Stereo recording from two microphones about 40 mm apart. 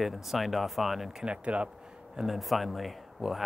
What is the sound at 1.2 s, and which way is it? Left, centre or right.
Speech, right.